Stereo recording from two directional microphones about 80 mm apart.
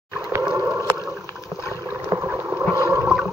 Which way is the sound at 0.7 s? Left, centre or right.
Right.